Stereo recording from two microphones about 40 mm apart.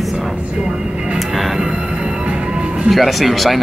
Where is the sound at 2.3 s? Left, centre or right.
Right.